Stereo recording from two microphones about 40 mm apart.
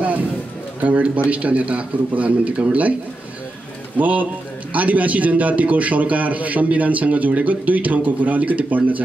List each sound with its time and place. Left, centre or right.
0.7 s a man's voice: right
4.0 s a man's voice: right